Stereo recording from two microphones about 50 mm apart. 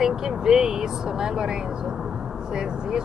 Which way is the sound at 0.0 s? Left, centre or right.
Centre.